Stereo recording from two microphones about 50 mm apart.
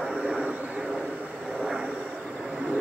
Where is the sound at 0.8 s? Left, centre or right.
Centre.